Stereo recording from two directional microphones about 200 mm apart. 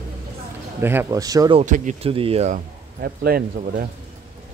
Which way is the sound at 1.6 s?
35° right (ahead or behind).